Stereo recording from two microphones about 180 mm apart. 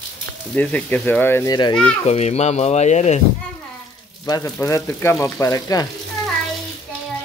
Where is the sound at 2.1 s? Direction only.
35° left (ahead or behind).